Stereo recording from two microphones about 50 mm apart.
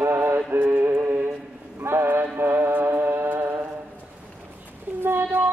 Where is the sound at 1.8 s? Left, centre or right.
Right.